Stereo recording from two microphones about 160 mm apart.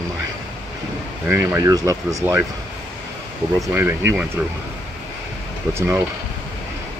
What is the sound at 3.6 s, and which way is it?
Speech, 15° right (ahead or behind).